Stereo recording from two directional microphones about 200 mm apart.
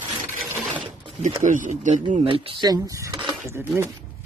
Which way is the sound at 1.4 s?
40° right (ahead or behind).